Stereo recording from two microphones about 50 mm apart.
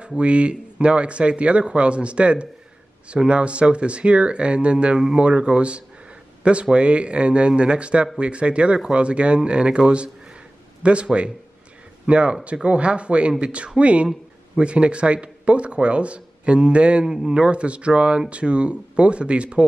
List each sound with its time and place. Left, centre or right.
0.2 s speech: right
17.0 s a man's voice: centre
17.3 s speech: right